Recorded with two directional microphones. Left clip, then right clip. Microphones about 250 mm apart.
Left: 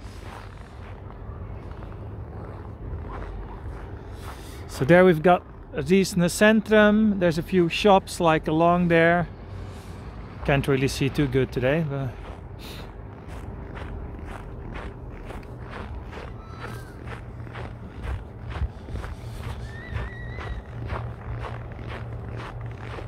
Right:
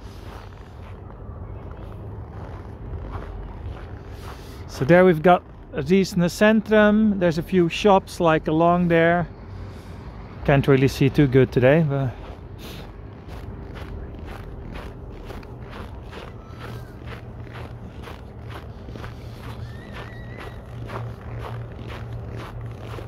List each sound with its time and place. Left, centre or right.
4.7 s speech: centre
10.4 s speech: centre
14.3 s walk: centre
20.0 s music: centre